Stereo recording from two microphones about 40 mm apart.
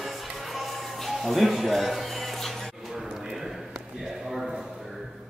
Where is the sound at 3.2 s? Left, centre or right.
Centre.